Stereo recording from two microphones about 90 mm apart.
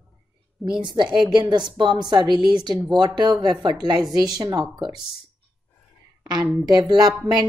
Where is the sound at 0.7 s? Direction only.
60° right (ahead or behind).